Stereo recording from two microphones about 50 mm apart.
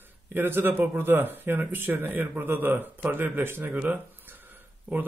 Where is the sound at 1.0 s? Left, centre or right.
Right.